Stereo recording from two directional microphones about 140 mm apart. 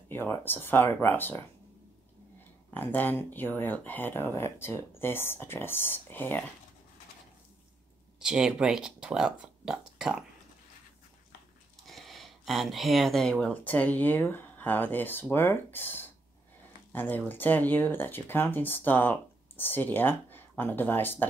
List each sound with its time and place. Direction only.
0.1 s speech: 15° left (ahead or behind)
2.7 s speech: 10° left (ahead or behind)
8.2 s speech: 5° right (ahead or behind)
11.9 s speech: centre (ahead or behind)